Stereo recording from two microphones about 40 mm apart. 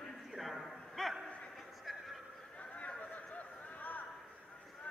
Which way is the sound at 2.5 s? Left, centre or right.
Left.